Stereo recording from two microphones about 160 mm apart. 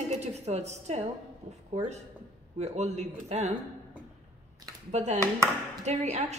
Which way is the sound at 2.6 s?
45° right (ahead or behind).